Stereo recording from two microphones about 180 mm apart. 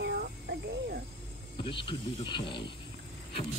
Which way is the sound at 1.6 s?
25° left (ahead or behind).